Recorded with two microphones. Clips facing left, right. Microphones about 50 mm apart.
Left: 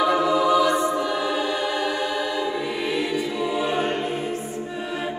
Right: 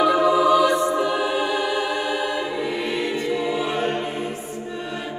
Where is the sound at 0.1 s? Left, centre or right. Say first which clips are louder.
Right 2 dB; right.